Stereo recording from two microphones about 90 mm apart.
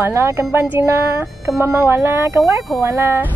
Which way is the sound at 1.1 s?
5° right (ahead or behind).